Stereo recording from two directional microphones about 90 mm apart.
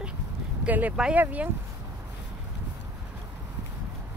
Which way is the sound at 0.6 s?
20° right (ahead or behind).